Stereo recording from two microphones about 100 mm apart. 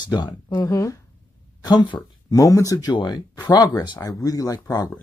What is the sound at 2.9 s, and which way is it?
Speech, 50° left (ahead or behind).